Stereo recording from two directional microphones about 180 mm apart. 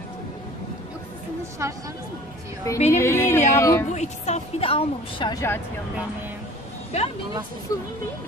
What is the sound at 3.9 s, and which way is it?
A woman's voice, 40° left (ahead or behind).